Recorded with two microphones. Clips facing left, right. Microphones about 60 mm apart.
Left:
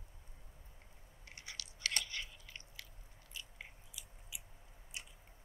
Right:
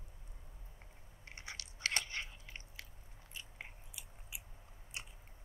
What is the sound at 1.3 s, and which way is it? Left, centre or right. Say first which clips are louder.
Biting: right 2 dB; right.